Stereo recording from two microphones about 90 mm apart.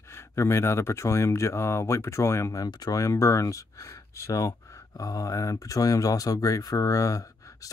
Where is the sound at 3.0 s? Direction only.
35° left (ahead or behind).